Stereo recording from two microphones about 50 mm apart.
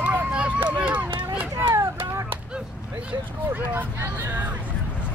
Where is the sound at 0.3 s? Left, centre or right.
Right.